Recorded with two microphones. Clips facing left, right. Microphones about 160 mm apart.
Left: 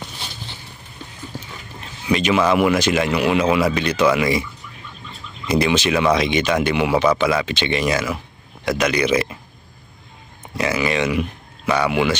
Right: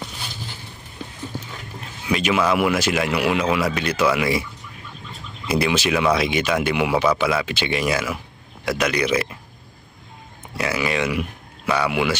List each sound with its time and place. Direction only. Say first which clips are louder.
2.0 s speech: left 3 dB; 5° right (ahead or behind)
5.5 s speech: left 2 dB; 5° right (ahead or behind)
10.6 s speech: left 2 dB; centre (ahead or behind)